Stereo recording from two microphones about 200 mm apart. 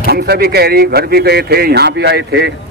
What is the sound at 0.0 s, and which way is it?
A man's voice, 55° right (ahead or behind).